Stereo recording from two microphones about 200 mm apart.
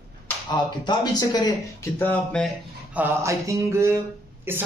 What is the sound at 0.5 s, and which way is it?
Speech, 20° left (ahead or behind).